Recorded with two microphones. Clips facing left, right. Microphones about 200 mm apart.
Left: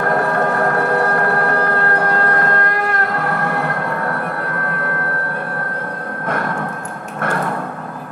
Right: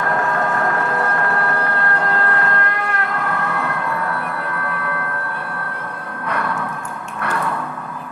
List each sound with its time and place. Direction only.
0.0 s train: 40° left (ahead or behind)
3.4 s emergency vehicle: 45° left (ahead or behind)
7.2 s a sound: 45° left (ahead or behind)